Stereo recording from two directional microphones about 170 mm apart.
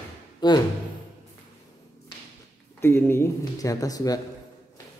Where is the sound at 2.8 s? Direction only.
15° left (ahead or behind).